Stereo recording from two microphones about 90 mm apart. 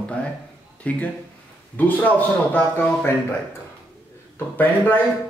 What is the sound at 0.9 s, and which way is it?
A man's voice, 15° left (ahead or behind).